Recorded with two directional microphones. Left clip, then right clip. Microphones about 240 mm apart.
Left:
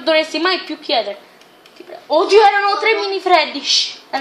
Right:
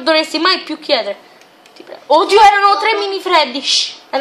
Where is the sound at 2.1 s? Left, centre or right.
Right.